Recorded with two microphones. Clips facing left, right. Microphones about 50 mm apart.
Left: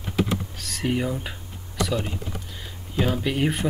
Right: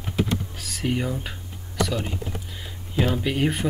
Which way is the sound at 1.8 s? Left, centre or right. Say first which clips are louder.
Even; centre.